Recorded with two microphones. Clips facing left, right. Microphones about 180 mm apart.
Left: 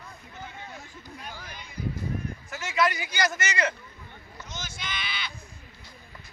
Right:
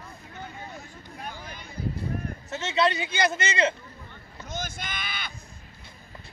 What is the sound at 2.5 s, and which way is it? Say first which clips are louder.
A man's voice: right 2 dB; 25° right (ahead or behind).